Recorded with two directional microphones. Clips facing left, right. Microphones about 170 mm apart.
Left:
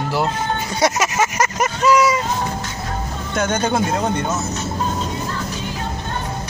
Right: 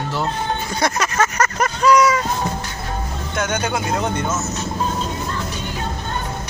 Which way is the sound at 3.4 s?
30° left (ahead or behind).